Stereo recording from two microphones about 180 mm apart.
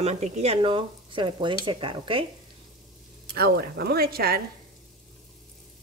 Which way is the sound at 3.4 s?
60° right (ahead or behind).